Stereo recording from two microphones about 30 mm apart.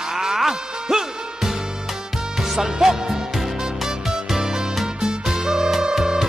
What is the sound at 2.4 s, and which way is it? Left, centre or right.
Music, centre.